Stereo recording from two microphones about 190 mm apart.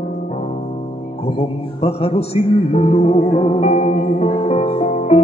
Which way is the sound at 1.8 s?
30° left (ahead or behind).